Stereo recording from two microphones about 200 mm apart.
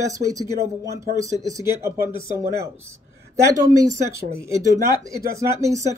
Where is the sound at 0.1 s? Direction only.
15° right (ahead or behind).